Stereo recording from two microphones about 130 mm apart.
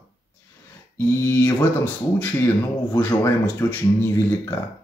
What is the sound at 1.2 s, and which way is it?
Speech, 20° left (ahead or behind).